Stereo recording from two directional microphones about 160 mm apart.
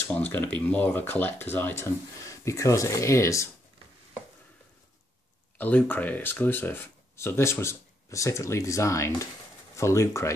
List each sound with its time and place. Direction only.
0.1 s speech: 10° left (ahead or behind)
5.6 s speech: 10° left (ahead or behind)